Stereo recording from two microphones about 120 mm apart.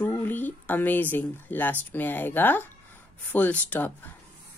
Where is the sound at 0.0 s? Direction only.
15° left (ahead or behind).